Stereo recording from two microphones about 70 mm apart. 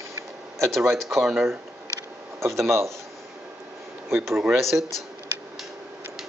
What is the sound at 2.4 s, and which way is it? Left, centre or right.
Speech, right.